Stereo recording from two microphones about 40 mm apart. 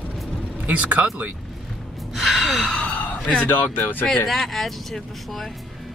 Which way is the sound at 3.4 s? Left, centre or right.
Left.